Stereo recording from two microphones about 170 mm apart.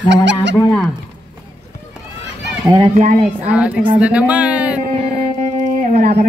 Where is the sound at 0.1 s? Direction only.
90° right.